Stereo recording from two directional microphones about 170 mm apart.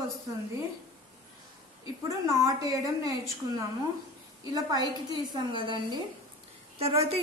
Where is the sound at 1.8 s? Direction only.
20° right (ahead or behind).